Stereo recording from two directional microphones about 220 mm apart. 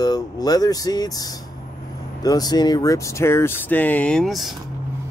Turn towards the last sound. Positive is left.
turn(degrees=0)  # may be behind; listen again after turning